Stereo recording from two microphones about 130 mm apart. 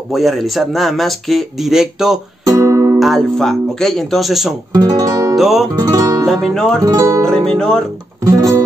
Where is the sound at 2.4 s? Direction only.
25° right (ahead or behind).